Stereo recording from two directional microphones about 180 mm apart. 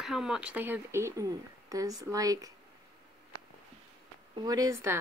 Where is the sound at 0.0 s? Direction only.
Centre (ahead or behind); by 2.5 s 20° right (ahead or behind).